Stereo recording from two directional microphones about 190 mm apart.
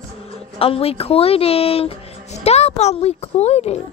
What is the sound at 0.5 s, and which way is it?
Speech, 30° left (ahead or behind).